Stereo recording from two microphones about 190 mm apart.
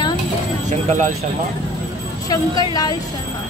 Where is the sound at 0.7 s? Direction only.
40° right (ahead or behind).